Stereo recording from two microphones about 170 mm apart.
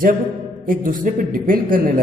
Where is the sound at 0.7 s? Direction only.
55° right (ahead or behind).